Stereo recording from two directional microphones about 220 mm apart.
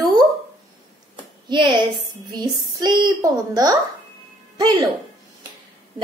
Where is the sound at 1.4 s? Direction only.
20° right (ahead or behind).